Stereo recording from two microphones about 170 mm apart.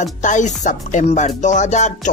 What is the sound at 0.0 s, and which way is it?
Music, 45° left (ahead or behind).